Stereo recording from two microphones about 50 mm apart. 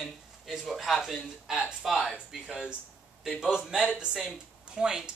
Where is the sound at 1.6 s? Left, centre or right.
Right.